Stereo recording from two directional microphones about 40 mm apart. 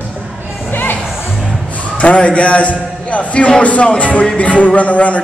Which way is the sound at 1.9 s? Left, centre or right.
Left.